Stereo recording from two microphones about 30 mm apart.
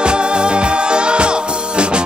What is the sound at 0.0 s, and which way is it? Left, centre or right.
Music, right.